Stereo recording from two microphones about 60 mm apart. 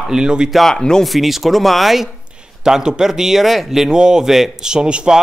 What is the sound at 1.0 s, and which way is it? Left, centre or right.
Speech, centre.